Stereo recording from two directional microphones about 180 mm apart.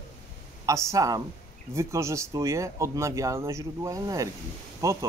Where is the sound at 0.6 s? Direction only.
20° right (ahead or behind).